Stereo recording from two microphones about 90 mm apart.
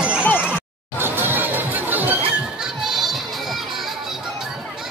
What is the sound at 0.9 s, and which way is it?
Music, 25° right (ahead or behind).